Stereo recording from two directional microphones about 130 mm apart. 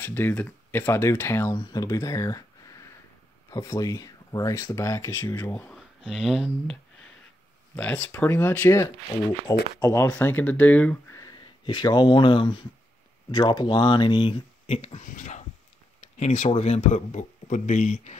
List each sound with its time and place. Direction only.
0.0 s speech: 15° left (ahead or behind)
3.4 s speech: 25° left (ahead or behind)
5.5 s speech: 5° left (ahead or behind)
7.7 s speech: 15° left (ahead or behind)
11.1 s speech: 35° left (ahead or behind); by 15.0 s 50° left (ahead or behind)
15.0 s speech: 75° left (ahead or behind)
16.2 s speech: 55° left (ahead or behind)